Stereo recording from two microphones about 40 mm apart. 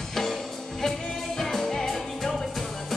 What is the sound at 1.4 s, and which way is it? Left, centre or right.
Music, centre.